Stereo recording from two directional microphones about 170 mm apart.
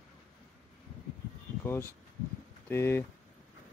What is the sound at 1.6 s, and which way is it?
A man's voice, 15° left (ahead or behind).